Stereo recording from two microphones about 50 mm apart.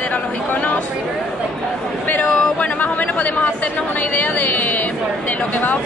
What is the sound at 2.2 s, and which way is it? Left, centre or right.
Speech, left.